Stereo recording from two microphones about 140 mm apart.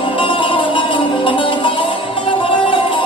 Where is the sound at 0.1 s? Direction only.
35° left (ahead or behind).